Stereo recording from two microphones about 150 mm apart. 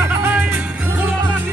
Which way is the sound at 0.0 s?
15° right (ahead or behind).